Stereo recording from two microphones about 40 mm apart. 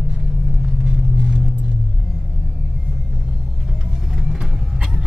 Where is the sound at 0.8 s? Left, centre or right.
Centre.